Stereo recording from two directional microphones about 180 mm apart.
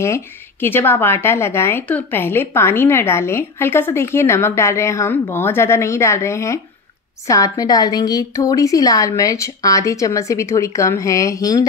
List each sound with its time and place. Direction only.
0.0 s a woman's voice: 15° left (ahead or behind)